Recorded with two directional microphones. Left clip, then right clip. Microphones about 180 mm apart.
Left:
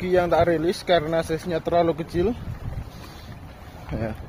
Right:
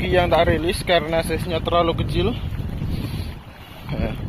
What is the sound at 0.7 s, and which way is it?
Speech, 25° left (ahead or behind).